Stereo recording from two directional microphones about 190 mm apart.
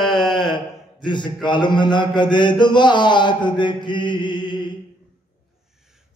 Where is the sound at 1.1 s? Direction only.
25° left (ahead or behind).